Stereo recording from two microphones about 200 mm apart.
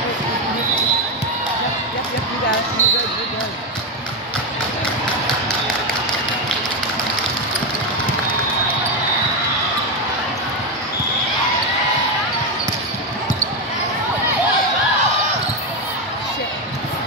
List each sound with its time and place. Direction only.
2.8 s basketball bounce: 35° left (ahead or behind)